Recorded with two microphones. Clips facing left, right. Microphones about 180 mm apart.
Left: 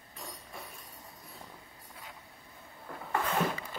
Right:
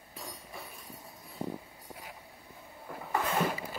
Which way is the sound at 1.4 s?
35° right (ahead or behind).